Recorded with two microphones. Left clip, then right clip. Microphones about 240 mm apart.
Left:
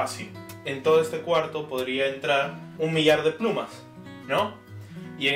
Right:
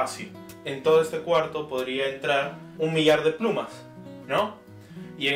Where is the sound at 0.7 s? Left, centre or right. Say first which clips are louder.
Even; centre.